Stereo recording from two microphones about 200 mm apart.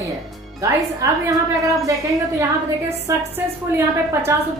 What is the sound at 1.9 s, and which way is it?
Speech, 15° right (ahead or behind).